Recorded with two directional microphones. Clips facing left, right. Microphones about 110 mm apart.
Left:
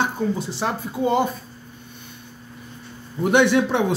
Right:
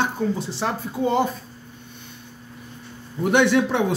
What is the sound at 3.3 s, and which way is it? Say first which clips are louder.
Speech: left 1 dB; 20° left (ahead or behind).